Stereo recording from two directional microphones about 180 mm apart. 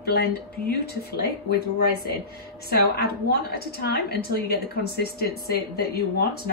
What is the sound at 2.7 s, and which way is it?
A woman's voice, 60° left (ahead or behind).